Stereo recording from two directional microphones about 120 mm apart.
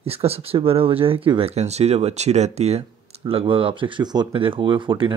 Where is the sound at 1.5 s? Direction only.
65° right (ahead or behind).